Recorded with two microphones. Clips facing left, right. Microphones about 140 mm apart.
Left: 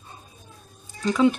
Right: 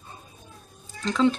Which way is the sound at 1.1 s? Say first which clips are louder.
Left 2 dB; 10° left (ahead or behind).